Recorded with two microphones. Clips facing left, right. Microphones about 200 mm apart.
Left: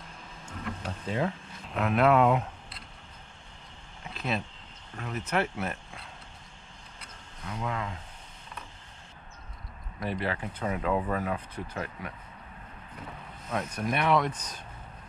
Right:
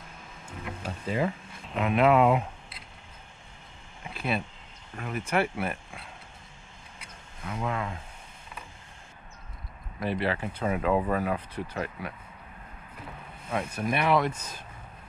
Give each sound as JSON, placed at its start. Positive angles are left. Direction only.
{"t": 0.5, "sound": "a sound", "side_deg": -5}
{"t": 4.0, "sound": "a sound", "side_deg": -5}
{"t": 4.9, "sound": "speech", "side_deg": -10}
{"t": 7.4, "sound": "speech", "side_deg": -25}
{"t": 10.3, "sound": "speech", "side_deg": -10}
{"t": 10.9, "sound": "speech", "side_deg": -20}
{"t": 11.2, "sound": "speech", "side_deg": -10}
{"t": 13.5, "sound": "speech", "side_deg": -10}